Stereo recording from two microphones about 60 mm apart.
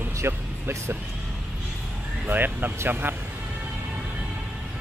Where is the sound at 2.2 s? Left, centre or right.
Right.